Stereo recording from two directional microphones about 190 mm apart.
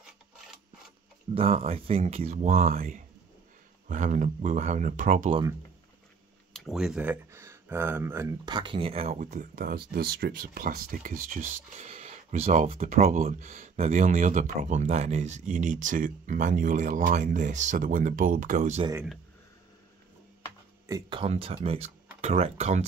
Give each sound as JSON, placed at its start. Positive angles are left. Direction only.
{"t": 1.3, "sound": "speech", "side_deg": -30}
{"t": 2.7, "sound": "speech", "side_deg": -50}
{"t": 6.5, "sound": "speech", "side_deg": 0}
{"t": 20.8, "sound": "speech", "side_deg": -20}